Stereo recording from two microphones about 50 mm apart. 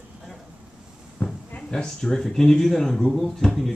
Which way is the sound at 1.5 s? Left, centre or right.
Left.